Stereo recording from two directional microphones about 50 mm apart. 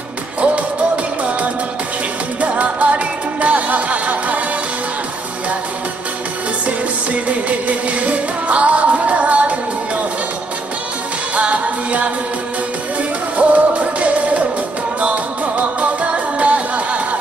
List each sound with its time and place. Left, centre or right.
2.4 s music: right
7.1 s music: right
11.3 s music: right
13.4 s music: right